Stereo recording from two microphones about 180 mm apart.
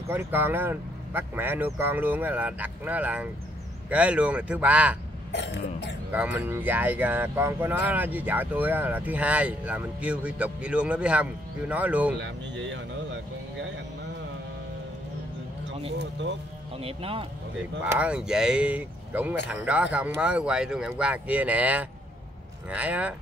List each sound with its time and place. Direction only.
0.1 s speech: 10° right (ahead or behind)
5.3 s throat clearing: 75° left (ahead or behind)
6.1 s speech: 10° right (ahead or behind)
12.2 s speech: 85° right
16.0 s speech: 90° right
16.7 s speech: 30° right (ahead or behind)
17.8 s speech: 5° right (ahead or behind)